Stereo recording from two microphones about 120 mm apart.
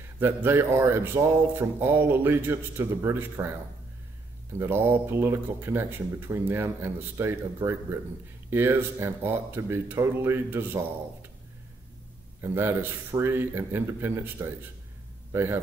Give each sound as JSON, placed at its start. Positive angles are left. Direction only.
{"t": 0.2, "sound": "speech", "side_deg": -20}
{"t": 4.6, "sound": "speech", "side_deg": -20}
{"t": 12.4, "sound": "speech", "side_deg": -20}